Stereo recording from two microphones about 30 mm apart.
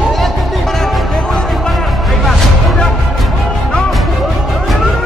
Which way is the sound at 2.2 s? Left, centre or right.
Centre.